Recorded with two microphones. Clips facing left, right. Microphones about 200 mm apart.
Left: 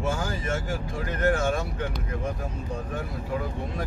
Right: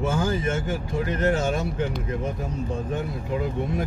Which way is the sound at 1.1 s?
20° right (ahead or behind).